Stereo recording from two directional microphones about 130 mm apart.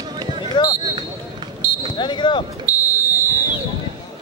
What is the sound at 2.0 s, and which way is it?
Speech, 35° left (ahead or behind).